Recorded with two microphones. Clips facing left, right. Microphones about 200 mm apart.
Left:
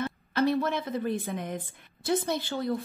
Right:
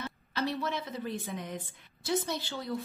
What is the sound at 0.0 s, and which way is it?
A woman's voice, 55° left (ahead or behind).